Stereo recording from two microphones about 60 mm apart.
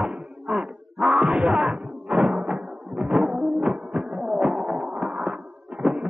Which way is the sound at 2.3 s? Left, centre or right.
Centre.